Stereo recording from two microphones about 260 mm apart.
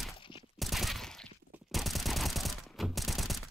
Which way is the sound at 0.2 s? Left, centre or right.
Centre.